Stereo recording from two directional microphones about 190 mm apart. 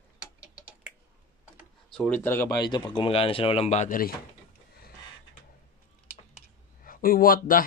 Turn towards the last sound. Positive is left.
turn(degrees=50)  # may be behind; listen again after turning